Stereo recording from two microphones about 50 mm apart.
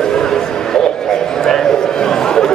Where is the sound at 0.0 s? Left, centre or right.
Centre.